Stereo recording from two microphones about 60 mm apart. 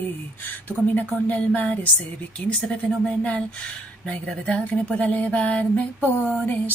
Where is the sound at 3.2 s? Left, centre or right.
Centre.